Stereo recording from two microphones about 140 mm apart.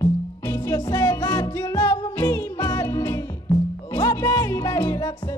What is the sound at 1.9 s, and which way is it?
Music, 20° left (ahead or behind).